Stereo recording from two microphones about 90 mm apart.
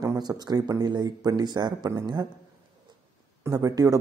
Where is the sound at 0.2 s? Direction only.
50° right (ahead or behind).